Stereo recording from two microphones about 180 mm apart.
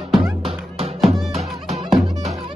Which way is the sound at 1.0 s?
Centre (ahead or behind).